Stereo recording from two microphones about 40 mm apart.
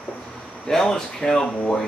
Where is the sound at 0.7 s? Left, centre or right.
Centre.